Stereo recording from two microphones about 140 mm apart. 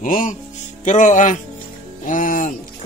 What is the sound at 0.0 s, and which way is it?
A man's voice, 65° left (ahead or behind).